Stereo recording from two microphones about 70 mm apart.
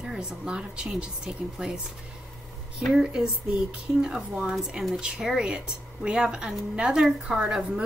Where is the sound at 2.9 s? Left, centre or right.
Centre.